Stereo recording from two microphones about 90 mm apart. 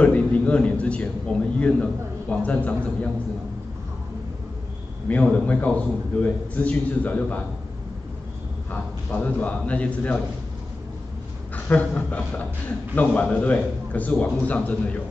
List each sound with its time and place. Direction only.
0.0 s a man's voice: 15° left (ahead or behind)
5.0 s a man's voice: 15° left (ahead or behind)
9.1 s a man's voice: 15° left (ahead or behind)
11.5 s a man's voice: 15° left (ahead or behind)